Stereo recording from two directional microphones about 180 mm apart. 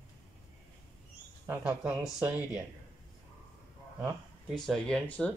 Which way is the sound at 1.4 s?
10° right (ahead or behind).